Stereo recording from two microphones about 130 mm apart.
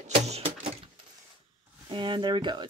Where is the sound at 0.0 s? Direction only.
55° right (ahead or behind).